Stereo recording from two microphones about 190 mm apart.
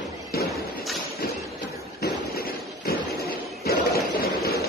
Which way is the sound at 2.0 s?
55° left (ahead or behind).